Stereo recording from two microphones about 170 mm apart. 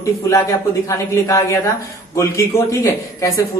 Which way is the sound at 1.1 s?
15° left (ahead or behind).